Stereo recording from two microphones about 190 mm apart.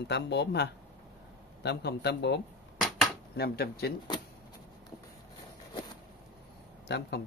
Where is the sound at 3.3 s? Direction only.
55° left (ahead or behind).